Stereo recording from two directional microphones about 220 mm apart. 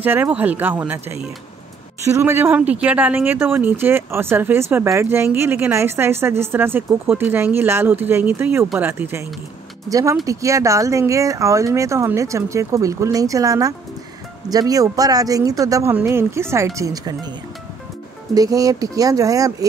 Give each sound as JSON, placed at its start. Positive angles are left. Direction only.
{"t": 0.0, "sound": "speech", "side_deg": -10}
{"t": 18.3, "sound": "speech", "side_deg": -15}